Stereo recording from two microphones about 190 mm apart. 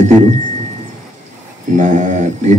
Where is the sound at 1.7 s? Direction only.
40° right (ahead or behind).